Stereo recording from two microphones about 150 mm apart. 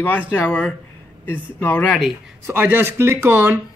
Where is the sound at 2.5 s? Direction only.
15° right (ahead or behind).